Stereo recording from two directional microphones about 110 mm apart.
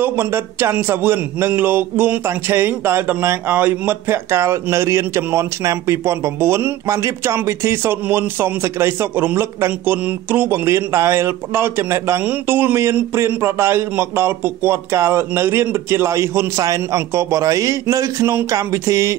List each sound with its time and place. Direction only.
0.0 s a man's voice: 20° right (ahead or behind)